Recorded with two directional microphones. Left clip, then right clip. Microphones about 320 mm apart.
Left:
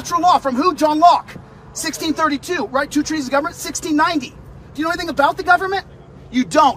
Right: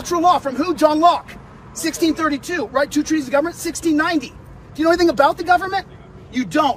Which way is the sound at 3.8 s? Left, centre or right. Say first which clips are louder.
Left 2 dB; centre.